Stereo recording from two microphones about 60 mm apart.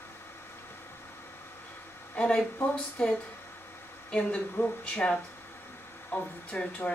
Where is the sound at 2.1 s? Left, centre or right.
Centre.